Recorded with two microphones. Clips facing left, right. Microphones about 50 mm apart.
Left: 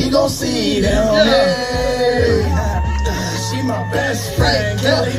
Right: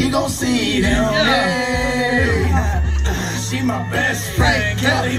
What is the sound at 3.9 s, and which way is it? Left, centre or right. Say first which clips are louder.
Music: left 1 dB; right.